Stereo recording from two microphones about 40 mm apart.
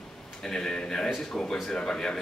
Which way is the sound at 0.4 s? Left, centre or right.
Centre.